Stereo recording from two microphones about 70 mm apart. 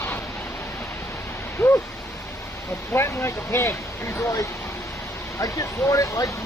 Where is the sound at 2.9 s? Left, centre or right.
Left.